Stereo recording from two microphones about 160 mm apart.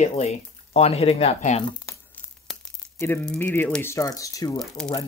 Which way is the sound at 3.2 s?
10° left (ahead or behind).